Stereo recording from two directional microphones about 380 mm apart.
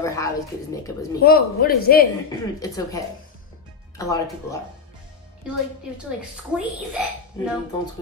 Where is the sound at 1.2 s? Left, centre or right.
Left.